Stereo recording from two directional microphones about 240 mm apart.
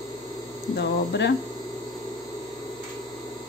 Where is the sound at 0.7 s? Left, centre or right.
Left.